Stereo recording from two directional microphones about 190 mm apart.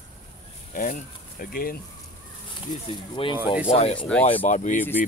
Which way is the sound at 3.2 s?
30° left (ahead or behind).